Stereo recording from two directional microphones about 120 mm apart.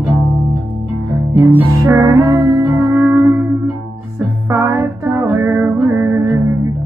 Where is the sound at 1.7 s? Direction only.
30° right (ahead or behind).